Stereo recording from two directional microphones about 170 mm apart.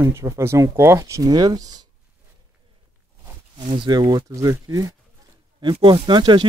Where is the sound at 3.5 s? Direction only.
30° right (ahead or behind).